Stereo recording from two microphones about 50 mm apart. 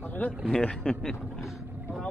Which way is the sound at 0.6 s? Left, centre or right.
Centre.